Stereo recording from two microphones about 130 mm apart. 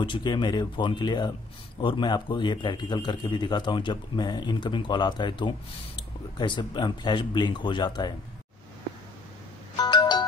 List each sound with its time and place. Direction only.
0.0 s a man's voice: 35° left (ahead or behind)
9.8 s music: 35° left (ahead or behind)